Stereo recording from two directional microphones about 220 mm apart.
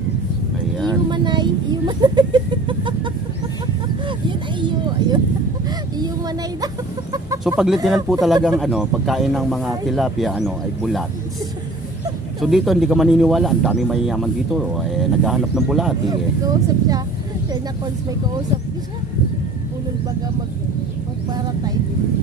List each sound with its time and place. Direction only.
1.1 s a sound: 20° right (ahead or behind)
4.3 s a sound: 20° right (ahead or behind)
6.6 s chicken: 15° right (ahead or behind)
7.4 s speech: 5° right (ahead or behind)
12.4 s speech: centre (ahead or behind)
16.1 s speech: 15° right (ahead or behind)